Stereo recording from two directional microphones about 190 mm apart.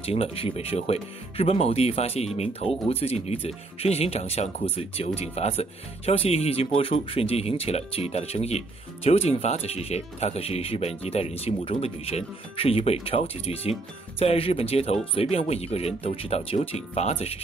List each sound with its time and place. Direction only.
0.0 s speech: 30° left (ahead or behind)